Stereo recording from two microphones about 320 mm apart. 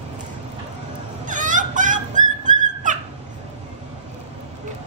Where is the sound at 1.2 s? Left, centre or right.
Right.